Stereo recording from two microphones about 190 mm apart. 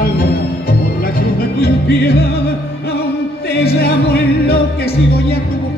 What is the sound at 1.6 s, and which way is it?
Music, 60° left (ahead or behind).